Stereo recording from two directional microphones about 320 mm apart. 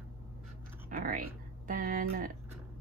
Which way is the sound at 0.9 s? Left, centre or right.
Right.